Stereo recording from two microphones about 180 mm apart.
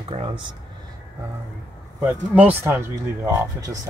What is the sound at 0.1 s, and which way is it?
Speech, 30° right (ahead or behind).